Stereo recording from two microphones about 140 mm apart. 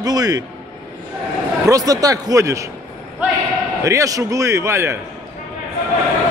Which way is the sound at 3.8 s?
25° right (ahead or behind).